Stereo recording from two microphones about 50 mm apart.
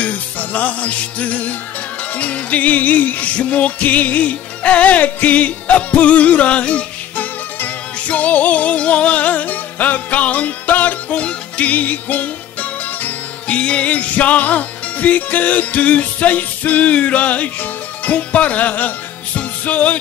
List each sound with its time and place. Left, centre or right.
0.0 s music: left
13.5 s music: left